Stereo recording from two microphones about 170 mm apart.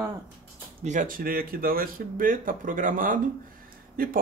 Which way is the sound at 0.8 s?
50° right (ahead or behind).